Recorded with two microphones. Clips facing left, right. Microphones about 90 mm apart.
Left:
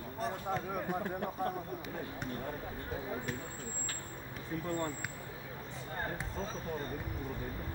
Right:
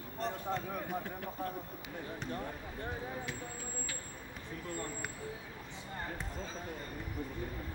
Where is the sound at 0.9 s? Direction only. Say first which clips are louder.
Left 4 dB; 25° left (ahead or behind).